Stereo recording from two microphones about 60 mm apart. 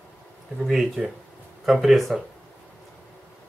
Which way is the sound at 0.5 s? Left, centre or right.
Centre.